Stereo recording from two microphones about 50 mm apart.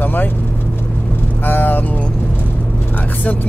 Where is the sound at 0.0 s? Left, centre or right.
Left.